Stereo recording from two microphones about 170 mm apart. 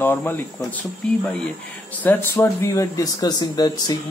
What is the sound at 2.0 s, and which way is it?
Speech, 10° left (ahead or behind).